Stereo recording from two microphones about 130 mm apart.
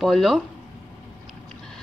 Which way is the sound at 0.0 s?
Centre (ahead or behind).